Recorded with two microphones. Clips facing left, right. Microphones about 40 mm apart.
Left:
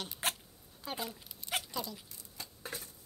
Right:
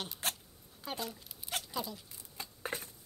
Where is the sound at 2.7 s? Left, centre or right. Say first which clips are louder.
Right 4 dB; right.